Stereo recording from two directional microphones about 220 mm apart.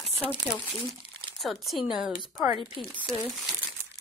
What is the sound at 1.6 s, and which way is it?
Speech, centre (ahead or behind).